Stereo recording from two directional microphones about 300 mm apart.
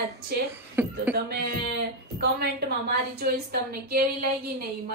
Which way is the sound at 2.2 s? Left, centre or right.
Right.